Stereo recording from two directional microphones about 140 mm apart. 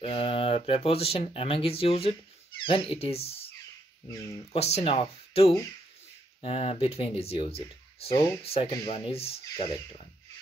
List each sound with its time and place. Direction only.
0.0 s speech: 40° left (ahead or behind)
4.5 s speech: 50° left (ahead or behind)